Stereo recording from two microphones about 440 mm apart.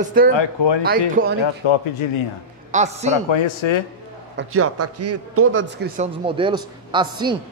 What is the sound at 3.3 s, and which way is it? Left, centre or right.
Speech, left.